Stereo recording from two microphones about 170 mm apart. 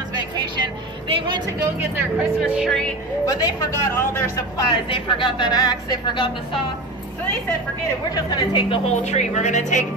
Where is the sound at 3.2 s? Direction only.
20° left (ahead or behind).